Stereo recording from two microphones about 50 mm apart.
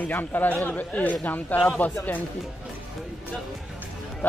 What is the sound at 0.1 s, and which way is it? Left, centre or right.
A man's voice, left.